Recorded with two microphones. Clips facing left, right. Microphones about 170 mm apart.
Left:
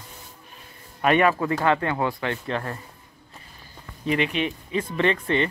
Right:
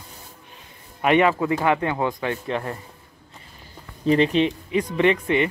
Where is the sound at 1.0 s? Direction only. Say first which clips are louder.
Right 2 dB; 20° right (ahead or behind).